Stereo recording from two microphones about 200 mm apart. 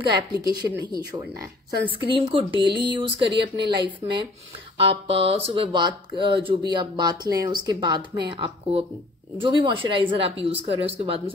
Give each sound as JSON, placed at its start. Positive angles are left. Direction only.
{"t": 0.5, "sound": "speech", "side_deg": -20}